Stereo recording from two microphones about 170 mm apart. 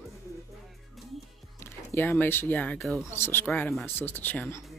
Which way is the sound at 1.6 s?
15° left (ahead or behind).